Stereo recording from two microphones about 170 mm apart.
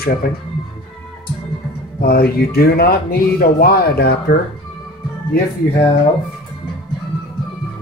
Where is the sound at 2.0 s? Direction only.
65° left (ahead or behind).